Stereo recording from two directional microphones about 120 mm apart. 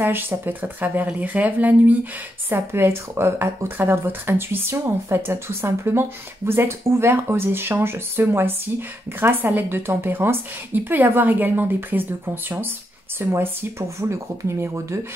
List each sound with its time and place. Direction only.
0.0 s a woman's voice: 15° right (ahead or behind)
13.2 s speech: 20° right (ahead or behind)